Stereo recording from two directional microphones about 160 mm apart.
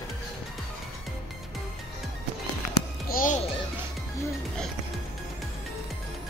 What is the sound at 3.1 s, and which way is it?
Music, 60° left (ahead or behind).